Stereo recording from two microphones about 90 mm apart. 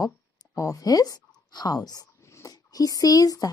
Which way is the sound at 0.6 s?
40° left (ahead or behind).